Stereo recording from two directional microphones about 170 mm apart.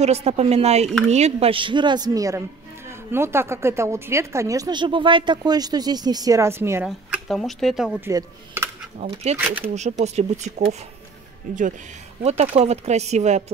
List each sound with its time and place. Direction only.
0.0 s speech: 40° right (ahead or behind); by 8.1 s 5° right (ahead or behind)
8.1 s speech: 20° right (ahead or behind)
9.0 s speech: 40° right (ahead or behind)